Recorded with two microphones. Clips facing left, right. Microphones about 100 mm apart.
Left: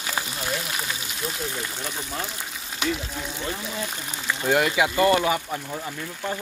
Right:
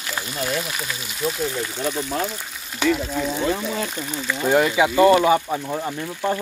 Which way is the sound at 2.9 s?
90° right.